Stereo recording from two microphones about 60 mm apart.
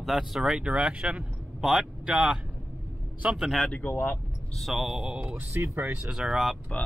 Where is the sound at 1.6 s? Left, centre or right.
Centre.